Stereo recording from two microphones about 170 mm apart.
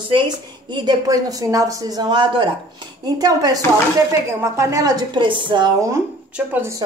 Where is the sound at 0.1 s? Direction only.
30° right (ahead or behind).